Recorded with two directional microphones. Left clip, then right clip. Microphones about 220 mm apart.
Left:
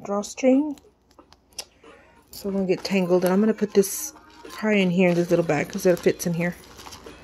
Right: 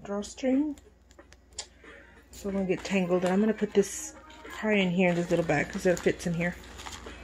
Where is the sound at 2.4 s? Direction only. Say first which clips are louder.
Left 6 dB; 35° left (ahead or behind).